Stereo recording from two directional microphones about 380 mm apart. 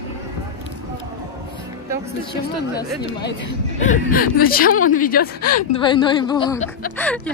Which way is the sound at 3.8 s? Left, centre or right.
Left.